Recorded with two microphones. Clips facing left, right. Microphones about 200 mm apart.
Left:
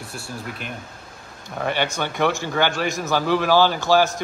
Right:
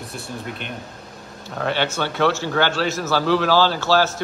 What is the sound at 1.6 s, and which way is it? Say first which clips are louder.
A man's voice: right 1 dB; 10° left (ahead or behind).